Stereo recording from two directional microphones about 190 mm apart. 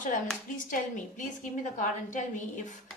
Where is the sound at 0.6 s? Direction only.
45° left (ahead or behind).